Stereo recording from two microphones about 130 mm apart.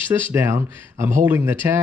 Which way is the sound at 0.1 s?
20° right (ahead or behind).